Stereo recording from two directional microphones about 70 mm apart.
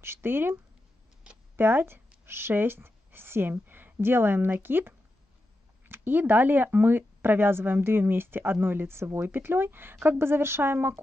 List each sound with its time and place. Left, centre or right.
0.0 s speech: right
1.6 s speech: right